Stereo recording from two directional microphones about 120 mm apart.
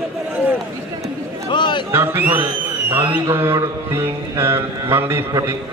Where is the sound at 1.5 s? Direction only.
40° left (ahead or behind).